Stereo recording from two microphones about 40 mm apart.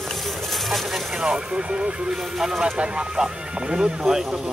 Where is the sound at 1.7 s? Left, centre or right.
Right.